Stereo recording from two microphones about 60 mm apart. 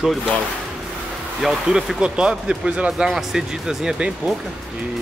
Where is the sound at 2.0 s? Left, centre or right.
Centre.